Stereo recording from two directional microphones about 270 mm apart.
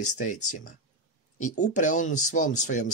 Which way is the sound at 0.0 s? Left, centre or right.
Left.